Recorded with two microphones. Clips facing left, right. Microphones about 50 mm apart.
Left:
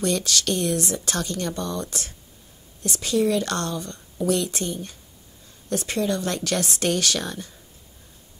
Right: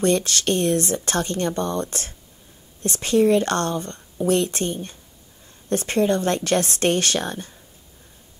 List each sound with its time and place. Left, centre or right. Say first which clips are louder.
0.0 s speech: right 4 dB; right